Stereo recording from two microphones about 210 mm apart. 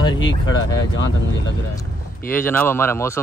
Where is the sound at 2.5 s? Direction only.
10° left (ahead or behind).